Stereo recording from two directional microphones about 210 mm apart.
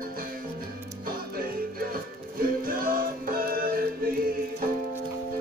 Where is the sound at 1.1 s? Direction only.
45° right (ahead or behind).